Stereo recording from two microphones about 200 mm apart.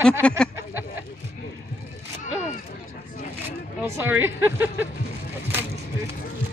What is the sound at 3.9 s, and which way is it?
Speech, 10° right (ahead or behind).